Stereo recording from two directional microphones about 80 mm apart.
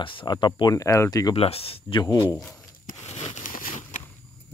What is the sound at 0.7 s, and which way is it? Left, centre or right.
Speech, left.